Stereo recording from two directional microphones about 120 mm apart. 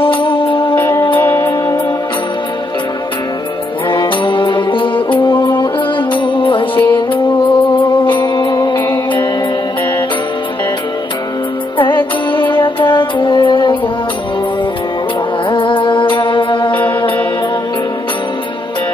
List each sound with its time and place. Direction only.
0.0 s music: 50° left (ahead or behind)
0.7 s music: 20° left (ahead or behind)
3.9 s music: 40° left (ahead or behind)
8.7 s music: 20° left (ahead or behind)
12.3 s music: 45° left (ahead or behind)
15.5 s music: 45° left (ahead or behind)